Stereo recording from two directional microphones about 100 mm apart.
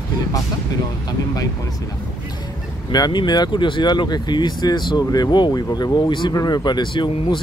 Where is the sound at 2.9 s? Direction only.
45° left (ahead or behind).